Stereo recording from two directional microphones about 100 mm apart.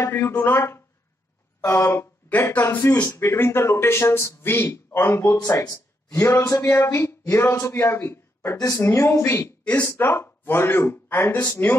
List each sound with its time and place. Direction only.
0.0 s speech: 25° left (ahead or behind)
8.5 s speech: 35° left (ahead or behind)